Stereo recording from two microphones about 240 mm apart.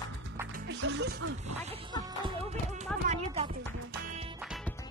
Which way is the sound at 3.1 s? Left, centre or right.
Right.